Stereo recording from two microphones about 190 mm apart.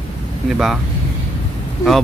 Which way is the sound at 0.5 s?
Centre (ahead or behind).